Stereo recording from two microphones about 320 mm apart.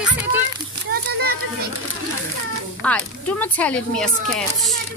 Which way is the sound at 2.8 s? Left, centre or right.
Centre.